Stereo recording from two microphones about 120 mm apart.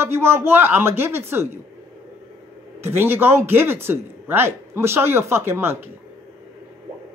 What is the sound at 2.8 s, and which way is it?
Speech, 20° right (ahead or behind).